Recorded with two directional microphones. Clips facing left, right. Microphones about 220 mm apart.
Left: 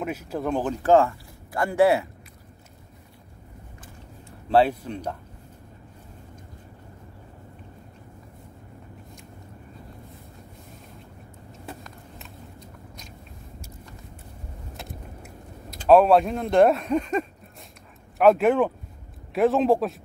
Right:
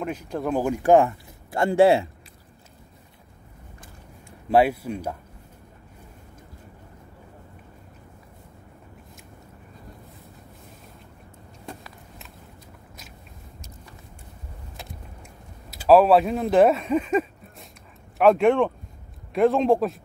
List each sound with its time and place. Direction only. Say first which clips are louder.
0.0 s speech: even; 5° left (ahead or behind)
0.5 s speech: right 2 dB; 10° right (ahead or behind); by 2.0 s 25° right (ahead or behind)
4.5 s speech: right 1 dB; 10° right (ahead or behind)
11.6 s vehicle: even; centre (ahead or behind)
14.8 s a sound: left 2 dB; centre (ahead or behind)
18.1 s speech: even; centre (ahead or behind)